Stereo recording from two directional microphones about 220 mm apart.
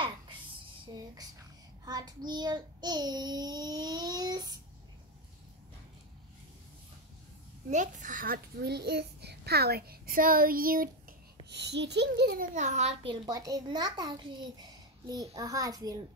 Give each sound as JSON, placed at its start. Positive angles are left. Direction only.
{"t": 1.9, "sound": "child singing", "side_deg": -20}
{"t": 7.7, "sound": "a child's voice", "side_deg": -35}